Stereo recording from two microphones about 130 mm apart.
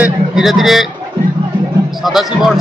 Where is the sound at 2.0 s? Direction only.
Centre (ahead or behind).